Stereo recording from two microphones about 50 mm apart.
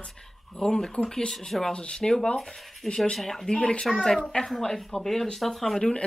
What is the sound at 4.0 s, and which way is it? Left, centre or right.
Speech, centre.